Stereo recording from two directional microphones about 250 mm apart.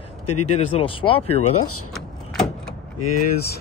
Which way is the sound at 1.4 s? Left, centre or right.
Left.